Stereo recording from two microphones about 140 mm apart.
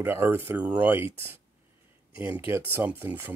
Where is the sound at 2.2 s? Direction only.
10° right (ahead or behind).